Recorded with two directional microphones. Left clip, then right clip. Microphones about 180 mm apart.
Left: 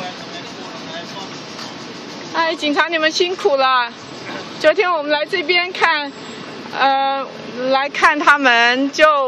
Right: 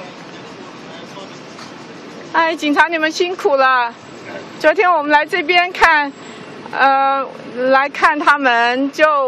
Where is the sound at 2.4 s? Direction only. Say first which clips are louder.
Right 3 dB; 25° right (ahead or behind).